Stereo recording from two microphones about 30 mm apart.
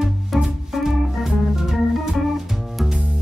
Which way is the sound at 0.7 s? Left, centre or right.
Centre.